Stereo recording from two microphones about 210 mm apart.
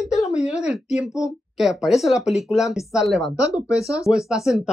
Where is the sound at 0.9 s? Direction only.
15° left (ahead or behind).